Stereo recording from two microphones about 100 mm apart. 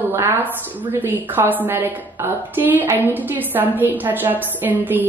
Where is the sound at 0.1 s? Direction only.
20° right (ahead or behind).